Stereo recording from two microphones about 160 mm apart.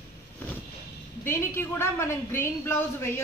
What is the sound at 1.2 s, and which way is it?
A woman's voice, 15° left (ahead or behind).